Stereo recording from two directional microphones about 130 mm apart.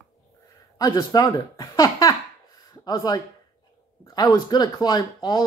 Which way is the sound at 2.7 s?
30° left (ahead or behind).